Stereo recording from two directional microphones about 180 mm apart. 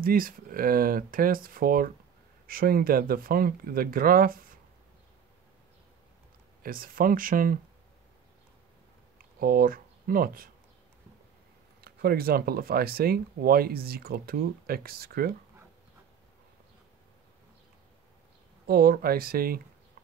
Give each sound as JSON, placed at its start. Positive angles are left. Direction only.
{"t": 0.0, "sound": "speech", "side_deg": -55}
{"t": 6.6, "sound": "speech", "side_deg": -55}
{"t": 9.2, "sound": "speech", "side_deg": -55}
{"t": 11.8, "sound": "speech", "side_deg": -55}
{"t": 18.7, "sound": "speech", "side_deg": -55}